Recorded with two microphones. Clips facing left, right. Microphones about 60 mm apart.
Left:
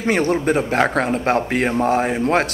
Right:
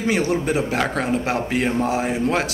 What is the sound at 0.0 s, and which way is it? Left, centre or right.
A man's voice, left.